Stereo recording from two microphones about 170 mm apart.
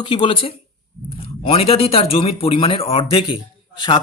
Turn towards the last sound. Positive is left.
turn(degrees=25)  # may be behind; listen again after turning